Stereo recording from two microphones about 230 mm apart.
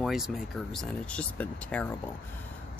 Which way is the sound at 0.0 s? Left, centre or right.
Centre.